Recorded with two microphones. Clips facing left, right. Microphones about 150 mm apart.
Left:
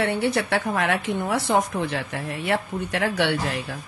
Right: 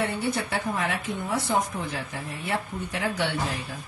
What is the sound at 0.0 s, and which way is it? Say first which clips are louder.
A woman's voice: left 5 dB; 75° left (ahead or behind).